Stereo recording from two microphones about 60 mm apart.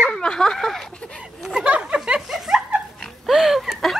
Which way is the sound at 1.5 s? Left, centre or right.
Right.